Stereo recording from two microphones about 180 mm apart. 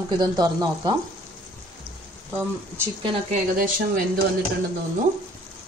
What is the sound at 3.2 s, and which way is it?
Speech, 50° right (ahead or behind).